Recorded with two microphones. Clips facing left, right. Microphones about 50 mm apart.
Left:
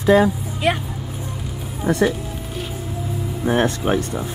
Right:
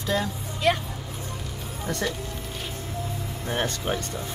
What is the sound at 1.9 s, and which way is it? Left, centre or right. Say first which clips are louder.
Speech: left 11 dB; centre.